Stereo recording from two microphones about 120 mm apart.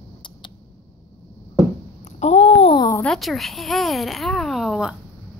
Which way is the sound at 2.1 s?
65° left (ahead or behind).